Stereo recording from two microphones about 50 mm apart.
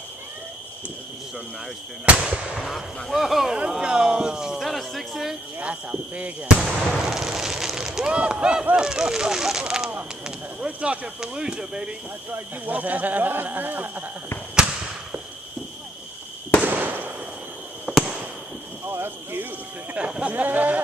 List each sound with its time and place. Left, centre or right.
2.2 s speech: centre
3.1 s speech: centre
3.4 s speech: centre
4.6 s speech: centre
5.6 s speech: right
6.4 s speech: centre
7.1 s a sound: centre
8.1 s speech: right
10.2 s speech: right
12.6 s speech: right
16.6 s fireworks: right
17.9 s fireworks: right
18.9 s clip-clop: right
20.2 s speech: right